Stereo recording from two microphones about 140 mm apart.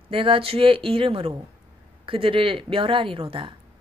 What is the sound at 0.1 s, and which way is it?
A woman's voice, 40° right (ahead or behind).